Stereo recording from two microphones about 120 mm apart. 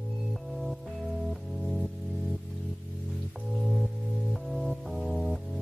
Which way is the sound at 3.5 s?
5° left (ahead or behind).